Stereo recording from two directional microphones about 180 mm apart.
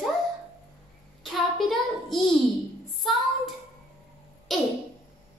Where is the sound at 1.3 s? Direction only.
Centre (ahead or behind).